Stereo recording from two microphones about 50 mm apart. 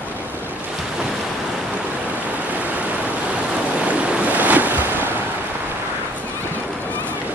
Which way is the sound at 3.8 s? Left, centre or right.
Right.